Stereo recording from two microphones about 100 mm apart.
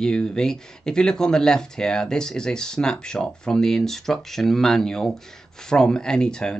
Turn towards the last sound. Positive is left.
turn(degrees=5)  # may be behind; listen again after turning